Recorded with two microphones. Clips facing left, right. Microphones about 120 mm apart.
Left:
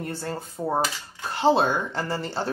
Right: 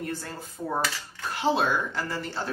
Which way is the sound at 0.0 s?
30° left (ahead or behind).